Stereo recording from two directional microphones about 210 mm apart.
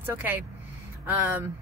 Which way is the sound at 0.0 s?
10° right (ahead or behind).